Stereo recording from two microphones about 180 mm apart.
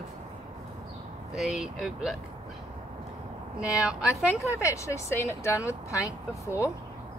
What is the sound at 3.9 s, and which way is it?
Speech, 5° right (ahead or behind).